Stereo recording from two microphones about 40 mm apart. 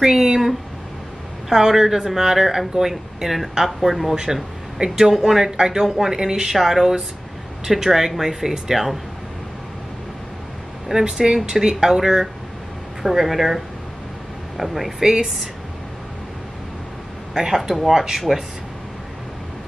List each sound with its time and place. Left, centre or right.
0.0 s speech: centre
4.7 s speech: centre
10.9 s speech: centre
14.6 s speech: centre
17.5 s speech: centre
18.3 s speech: centre